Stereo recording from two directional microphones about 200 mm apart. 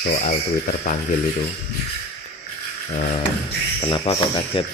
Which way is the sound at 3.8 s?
25° left (ahead or behind).